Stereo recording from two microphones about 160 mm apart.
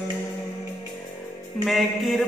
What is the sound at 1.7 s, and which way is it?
Music, centre (ahead or behind).